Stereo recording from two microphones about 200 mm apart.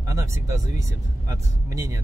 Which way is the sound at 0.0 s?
15° right (ahead or behind).